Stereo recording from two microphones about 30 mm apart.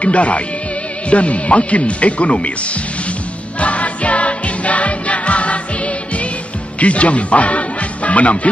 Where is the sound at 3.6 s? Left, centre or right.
Left.